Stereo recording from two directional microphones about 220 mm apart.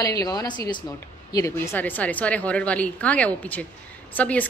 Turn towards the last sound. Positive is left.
turn(degrees=5)  # may be behind; listen again after turning